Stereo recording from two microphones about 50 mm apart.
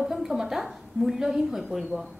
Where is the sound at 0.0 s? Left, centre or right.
Centre.